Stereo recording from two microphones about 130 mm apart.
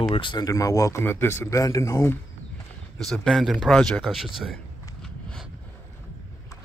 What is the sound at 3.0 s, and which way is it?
Speech, 5° left (ahead or behind).